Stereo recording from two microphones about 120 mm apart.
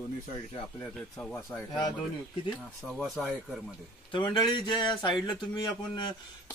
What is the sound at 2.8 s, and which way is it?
Speech, centre (ahead or behind).